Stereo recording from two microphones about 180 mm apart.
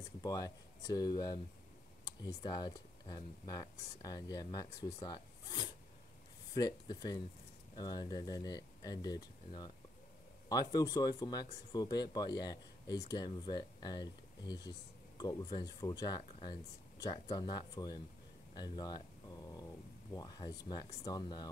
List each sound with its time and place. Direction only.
0.2 s speech: 20° left (ahead or behind)
10.5 s speech: 20° left (ahead or behind)
18.5 s a sound: 25° left (ahead or behind)
20.2 s speech: 25° left (ahead or behind)